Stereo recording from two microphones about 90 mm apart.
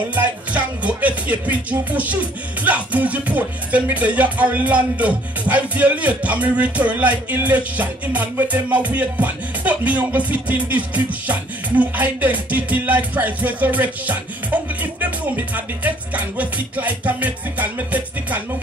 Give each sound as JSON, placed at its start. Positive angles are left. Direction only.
{"t": 0.1, "sound": "music", "side_deg": -15}